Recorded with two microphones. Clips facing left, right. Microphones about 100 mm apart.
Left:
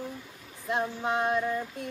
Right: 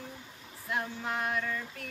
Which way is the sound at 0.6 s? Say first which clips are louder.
Left 5 dB; 25° left (ahead or behind).